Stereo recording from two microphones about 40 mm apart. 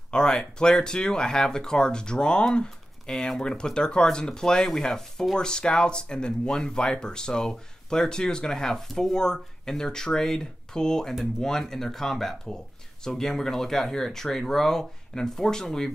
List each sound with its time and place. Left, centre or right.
0.1 s speech: centre